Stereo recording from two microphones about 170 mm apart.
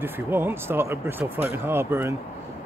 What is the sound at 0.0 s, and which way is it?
Speech, 10° right (ahead or behind).